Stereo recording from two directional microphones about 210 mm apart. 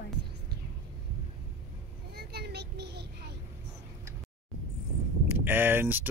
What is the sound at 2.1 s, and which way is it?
Vehicle, 50° right (ahead or behind).